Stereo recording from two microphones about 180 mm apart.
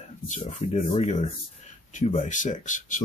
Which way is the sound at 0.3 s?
40° left (ahead or behind).